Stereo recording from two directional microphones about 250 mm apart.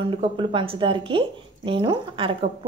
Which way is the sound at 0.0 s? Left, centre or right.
Right.